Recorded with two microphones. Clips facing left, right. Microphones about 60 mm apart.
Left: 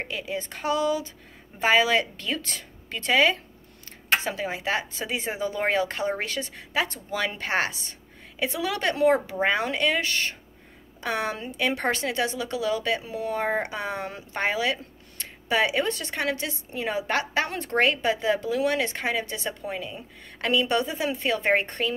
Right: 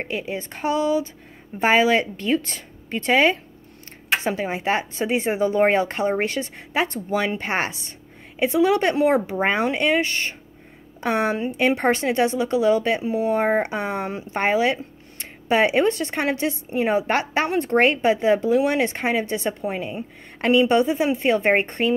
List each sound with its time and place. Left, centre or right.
0.0 s speech: right